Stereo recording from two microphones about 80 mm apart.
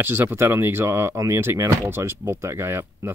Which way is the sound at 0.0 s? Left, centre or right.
Right.